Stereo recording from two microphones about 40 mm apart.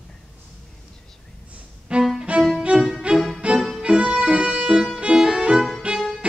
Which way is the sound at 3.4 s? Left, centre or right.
Right.